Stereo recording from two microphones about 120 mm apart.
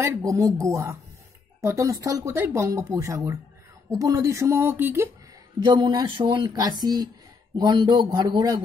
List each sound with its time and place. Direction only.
0.0 s speech: 25° right (ahead or behind)
5.6 s speech: 35° right (ahead or behind)